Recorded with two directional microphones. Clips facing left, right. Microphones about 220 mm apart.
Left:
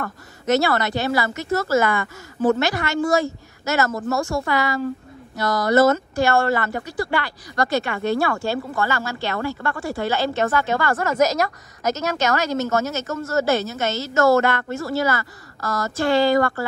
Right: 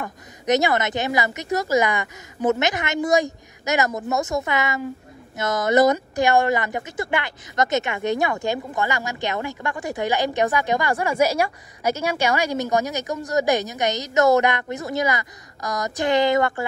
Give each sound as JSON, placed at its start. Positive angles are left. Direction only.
{"t": 0.0, "sound": "speech", "side_deg": -15}